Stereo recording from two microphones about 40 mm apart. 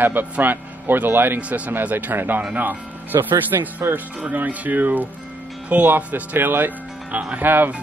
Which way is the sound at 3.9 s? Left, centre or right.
Right.